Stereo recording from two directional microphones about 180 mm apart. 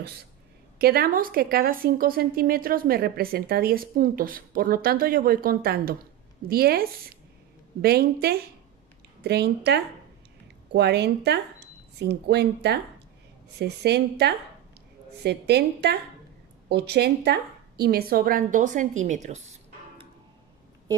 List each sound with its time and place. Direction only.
0.7 s a woman's voice: 60° right (ahead or behind); by 20.1 s 35° right (ahead or behind)